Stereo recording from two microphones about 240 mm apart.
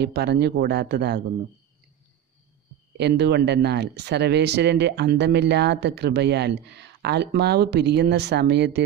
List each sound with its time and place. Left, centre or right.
0.0 s speech: right
3.0 s speech: right